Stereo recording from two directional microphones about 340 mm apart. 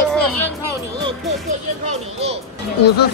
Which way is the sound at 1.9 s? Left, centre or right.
Centre.